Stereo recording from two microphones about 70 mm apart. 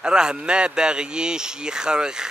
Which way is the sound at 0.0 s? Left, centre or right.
Centre.